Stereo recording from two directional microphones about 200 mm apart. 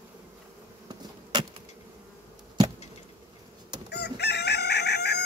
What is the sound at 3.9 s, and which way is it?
Chicken, 55° left (ahead or behind).